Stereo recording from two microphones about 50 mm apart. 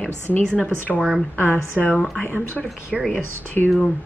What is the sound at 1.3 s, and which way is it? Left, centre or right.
Speech, left.